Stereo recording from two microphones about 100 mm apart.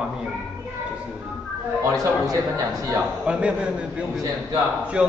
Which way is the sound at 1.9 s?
35° right (ahead or behind).